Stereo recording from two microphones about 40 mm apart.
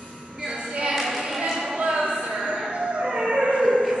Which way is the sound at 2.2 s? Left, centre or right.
Centre.